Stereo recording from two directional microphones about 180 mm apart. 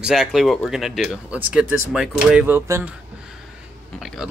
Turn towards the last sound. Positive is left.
turn(degrees=0)  # may be behind; listen again after turning